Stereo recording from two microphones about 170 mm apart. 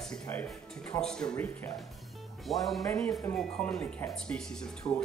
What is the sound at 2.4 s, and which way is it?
Speech, centre (ahead or behind).